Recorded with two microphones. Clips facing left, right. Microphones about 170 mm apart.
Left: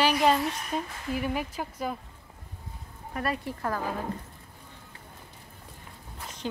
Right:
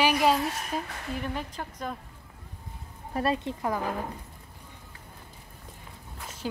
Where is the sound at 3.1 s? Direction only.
25° right (ahead or behind).